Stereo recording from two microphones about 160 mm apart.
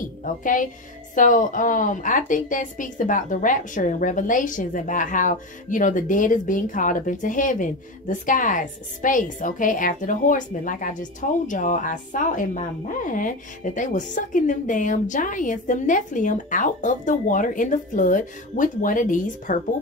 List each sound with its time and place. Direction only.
0.2 s a woman's voice: 55° left (ahead or behind)